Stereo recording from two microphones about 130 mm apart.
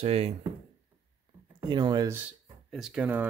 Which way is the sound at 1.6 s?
35° right (ahead or behind).